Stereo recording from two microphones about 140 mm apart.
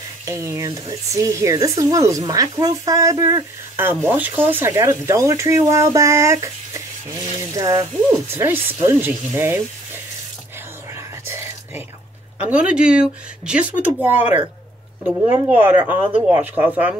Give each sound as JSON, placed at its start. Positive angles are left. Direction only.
{"t": 0.2, "sound": "speech", "side_deg": -20}
{"t": 11.2, "sound": "whispering", "side_deg": -15}
{"t": 12.4, "sound": "speech", "side_deg": -10}